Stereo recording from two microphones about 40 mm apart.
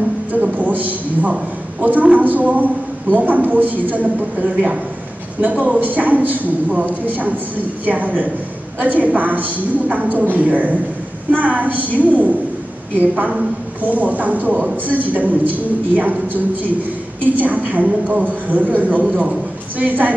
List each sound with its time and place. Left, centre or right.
0.3 s a man's voice: right
13.7 s a man's voice: right